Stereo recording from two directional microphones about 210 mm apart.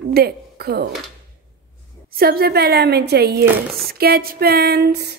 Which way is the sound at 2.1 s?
45° right (ahead or behind).